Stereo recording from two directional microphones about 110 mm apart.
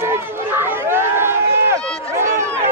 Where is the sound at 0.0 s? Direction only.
20° right (ahead or behind).